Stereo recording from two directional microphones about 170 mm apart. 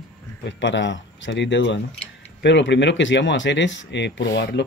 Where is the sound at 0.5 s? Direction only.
90° left.